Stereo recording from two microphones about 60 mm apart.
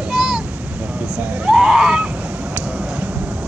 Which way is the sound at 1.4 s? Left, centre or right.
Centre.